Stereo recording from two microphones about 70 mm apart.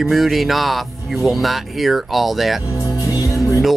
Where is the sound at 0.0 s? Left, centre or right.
Centre.